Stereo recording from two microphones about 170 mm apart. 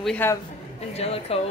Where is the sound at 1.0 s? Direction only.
35° left (ahead or behind).